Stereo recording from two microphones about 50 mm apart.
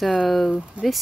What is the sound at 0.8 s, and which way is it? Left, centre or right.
Speech, right.